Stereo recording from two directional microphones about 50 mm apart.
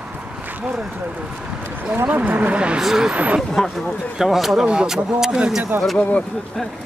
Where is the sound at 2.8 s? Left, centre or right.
Centre.